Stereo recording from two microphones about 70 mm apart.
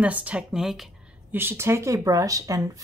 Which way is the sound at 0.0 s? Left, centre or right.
Centre.